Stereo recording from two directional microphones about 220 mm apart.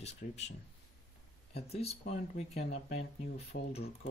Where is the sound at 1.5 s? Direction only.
30° left (ahead or behind).